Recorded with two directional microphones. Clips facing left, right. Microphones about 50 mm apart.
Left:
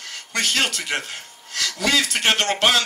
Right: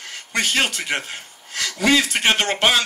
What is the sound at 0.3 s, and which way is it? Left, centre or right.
A man's voice, centre.